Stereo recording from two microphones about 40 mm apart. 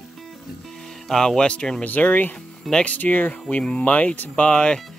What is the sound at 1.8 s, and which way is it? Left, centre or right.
Speech, left.